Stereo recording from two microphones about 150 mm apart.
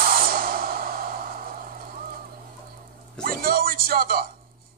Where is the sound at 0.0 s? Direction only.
70° right (ahead or behind).